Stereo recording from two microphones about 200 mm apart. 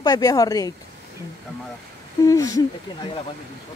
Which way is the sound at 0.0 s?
20° left (ahead or behind).